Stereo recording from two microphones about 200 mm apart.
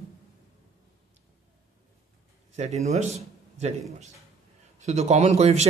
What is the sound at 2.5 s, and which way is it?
A man's voice, 35° right (ahead or behind).